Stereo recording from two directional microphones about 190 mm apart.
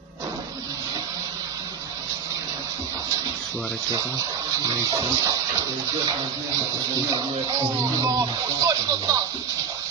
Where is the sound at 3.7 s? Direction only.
20° right (ahead or behind).